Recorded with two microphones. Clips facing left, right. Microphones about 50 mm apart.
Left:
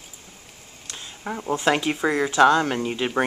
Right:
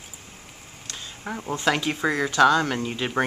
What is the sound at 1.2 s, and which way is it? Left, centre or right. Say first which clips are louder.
Speech: left 4 dB; centre.